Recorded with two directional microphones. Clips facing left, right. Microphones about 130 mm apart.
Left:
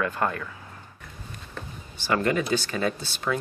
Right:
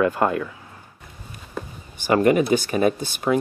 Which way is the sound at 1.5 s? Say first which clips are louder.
Right 8 dB; 15° right (ahead or behind).